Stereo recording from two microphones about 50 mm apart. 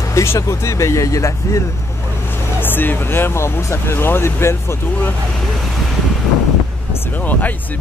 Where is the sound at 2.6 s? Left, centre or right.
Left.